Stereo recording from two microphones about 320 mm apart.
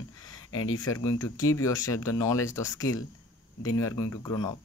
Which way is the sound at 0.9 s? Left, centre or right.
Centre.